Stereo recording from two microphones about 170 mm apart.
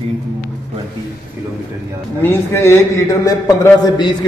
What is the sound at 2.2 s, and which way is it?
A man's voice, 15° left (ahead or behind).